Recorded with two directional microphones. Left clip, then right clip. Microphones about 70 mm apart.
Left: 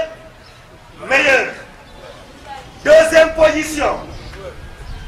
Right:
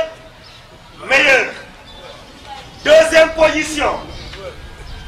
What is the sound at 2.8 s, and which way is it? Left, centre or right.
Music, centre.